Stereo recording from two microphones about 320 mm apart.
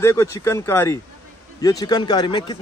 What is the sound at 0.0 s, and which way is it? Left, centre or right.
A man's voice, centre.